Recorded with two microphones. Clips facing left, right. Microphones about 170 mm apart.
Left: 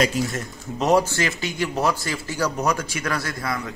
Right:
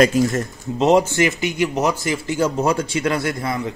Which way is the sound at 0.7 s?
20° right (ahead or behind).